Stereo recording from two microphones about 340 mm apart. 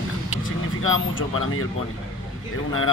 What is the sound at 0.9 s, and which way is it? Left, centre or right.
Speech, left.